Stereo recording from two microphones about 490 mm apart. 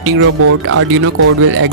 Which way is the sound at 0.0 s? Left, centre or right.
Right.